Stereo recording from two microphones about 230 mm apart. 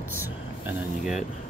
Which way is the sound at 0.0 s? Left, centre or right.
Centre.